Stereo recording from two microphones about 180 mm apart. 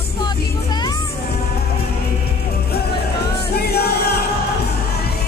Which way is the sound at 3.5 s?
60° left (ahead or behind).